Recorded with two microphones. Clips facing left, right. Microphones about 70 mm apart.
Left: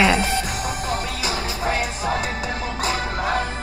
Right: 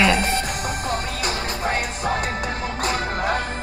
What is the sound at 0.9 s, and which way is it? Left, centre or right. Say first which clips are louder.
Music: even; right.